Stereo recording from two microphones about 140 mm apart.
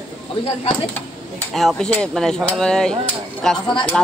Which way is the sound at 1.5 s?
Centre (ahead or behind).